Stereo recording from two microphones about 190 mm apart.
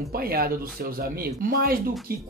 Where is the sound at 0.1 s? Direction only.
50° right (ahead or behind).